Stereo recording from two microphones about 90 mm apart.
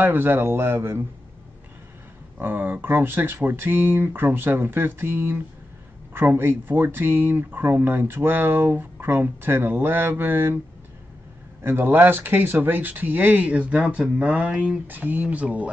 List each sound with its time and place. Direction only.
0.0 s speech: 25° right (ahead or behind)
2.3 s speech: 20° right (ahead or behind)
11.6 s speech: 25° right (ahead or behind)